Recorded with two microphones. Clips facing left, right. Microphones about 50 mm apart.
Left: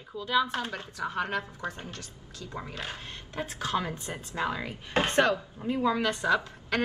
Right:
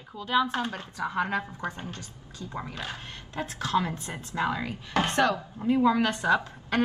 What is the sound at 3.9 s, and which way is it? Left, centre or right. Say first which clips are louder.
Speech: right 1 dB; right.